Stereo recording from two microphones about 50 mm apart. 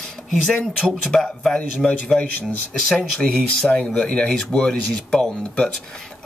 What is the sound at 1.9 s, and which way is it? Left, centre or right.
Speech, centre.